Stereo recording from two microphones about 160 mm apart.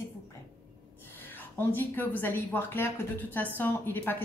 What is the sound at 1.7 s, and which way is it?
A woman's voice, 10° left (ahead or behind).